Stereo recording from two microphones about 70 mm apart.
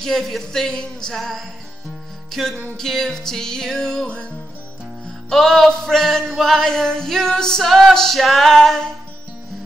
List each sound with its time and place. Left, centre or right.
0.0 s music: centre